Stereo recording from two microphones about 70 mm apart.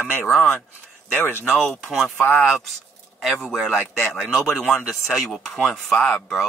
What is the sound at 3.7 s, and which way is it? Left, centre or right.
Speech, centre.